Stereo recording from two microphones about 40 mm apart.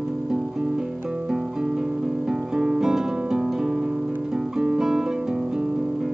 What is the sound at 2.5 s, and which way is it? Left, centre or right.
Music, centre.